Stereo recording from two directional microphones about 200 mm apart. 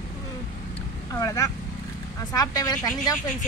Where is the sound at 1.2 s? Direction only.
15° left (ahead or behind).